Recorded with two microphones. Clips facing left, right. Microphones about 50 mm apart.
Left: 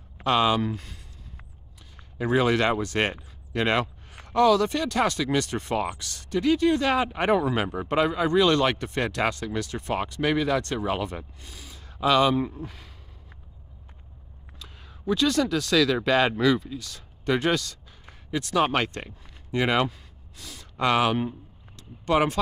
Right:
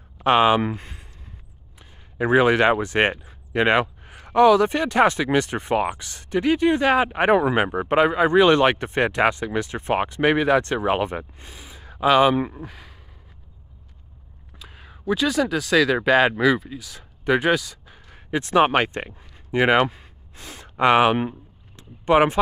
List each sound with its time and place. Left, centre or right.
0.2 s speech: right
2.1 s speech: right
12.6 s speech: centre
14.6 s speech: centre
18.1 s speech: right